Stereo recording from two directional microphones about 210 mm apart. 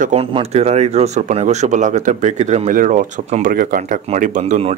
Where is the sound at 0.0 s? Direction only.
30° right (ahead or behind).